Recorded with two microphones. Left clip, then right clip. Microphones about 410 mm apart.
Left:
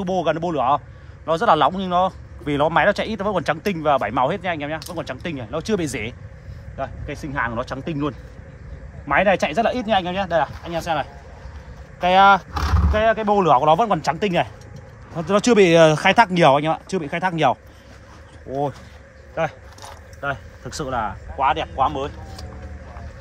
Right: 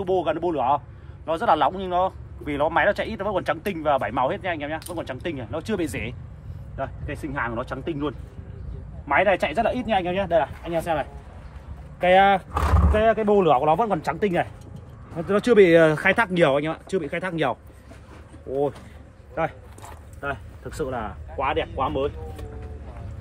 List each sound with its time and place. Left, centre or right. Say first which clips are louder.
0.0 s a man's voice: left 2 dB; left
20.2 s speech: left 4 dB; centre